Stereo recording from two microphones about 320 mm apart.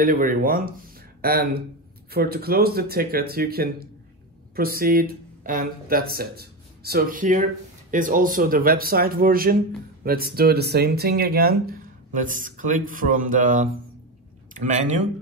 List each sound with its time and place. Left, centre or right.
0.0 s speech: right